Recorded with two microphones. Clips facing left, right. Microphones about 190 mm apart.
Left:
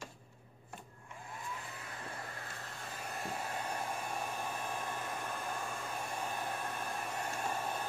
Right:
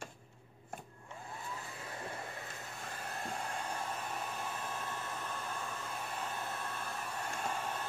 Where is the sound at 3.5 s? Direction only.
10° left (ahead or behind).